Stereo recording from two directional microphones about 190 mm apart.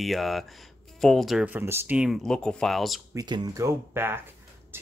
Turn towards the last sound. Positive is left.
turn(degrees=-10)  # may be behind; listen again after turning